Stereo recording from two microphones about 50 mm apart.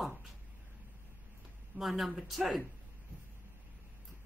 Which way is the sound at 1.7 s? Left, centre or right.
Right.